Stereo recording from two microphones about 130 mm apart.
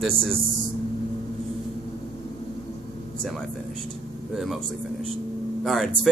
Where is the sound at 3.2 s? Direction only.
Centre (ahead or behind).